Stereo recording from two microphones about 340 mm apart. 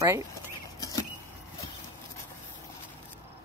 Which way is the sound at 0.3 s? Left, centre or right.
Centre.